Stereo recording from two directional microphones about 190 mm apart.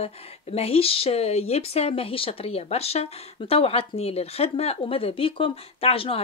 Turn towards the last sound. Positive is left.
turn(degrees=30)  # may be behind; listen again after turning